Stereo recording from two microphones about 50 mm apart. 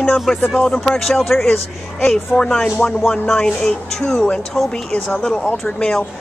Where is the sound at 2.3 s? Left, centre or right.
Centre.